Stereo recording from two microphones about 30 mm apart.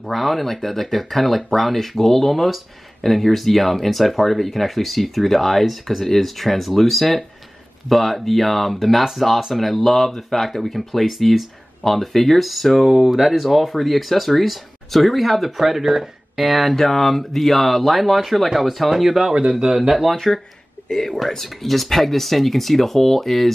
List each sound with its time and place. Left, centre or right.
0.0 s speech: centre
19.7 s speech: centre
20.3 s speech: centre
20.9 s speech: centre